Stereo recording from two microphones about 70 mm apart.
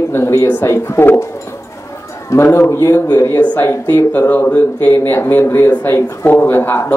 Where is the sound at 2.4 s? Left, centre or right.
Left.